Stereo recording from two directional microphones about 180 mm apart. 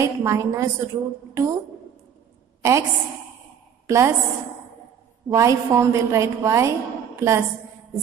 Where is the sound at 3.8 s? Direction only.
15° right (ahead or behind).